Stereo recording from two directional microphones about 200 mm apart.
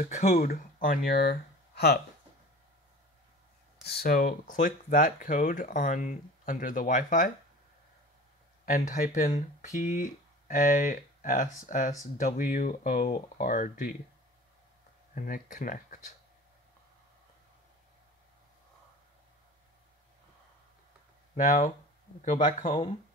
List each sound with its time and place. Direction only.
0.0 s speech: 35° left (ahead or behind); by 2.0 s 55° left (ahead or behind)
4.0 s speech: 50° left (ahead or behind)
8.6 s speech: 40° left (ahead or behind)
15.1 s speech: 40° left (ahead or behind)
21.4 s speech: 35° left (ahead or behind)